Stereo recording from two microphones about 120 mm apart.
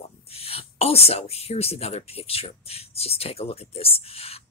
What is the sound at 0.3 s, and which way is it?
A woman's voice, 55° left (ahead or behind).